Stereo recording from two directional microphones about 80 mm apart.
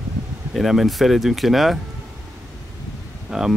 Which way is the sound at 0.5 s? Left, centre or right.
Centre.